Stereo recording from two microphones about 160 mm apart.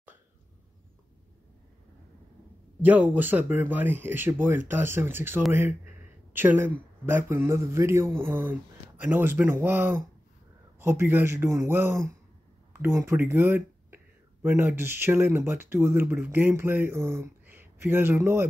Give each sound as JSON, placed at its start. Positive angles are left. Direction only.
{"t": 2.8, "sound": "a man's voice", "side_deg": -10}